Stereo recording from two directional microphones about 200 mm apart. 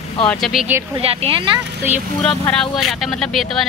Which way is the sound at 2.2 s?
5° left (ahead or behind).